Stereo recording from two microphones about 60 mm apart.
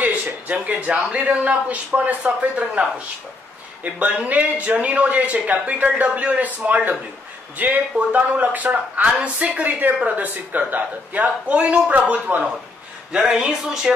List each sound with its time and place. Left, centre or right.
0.0 s a sound: right
1.1 s speech: right
13.1 s speech: centre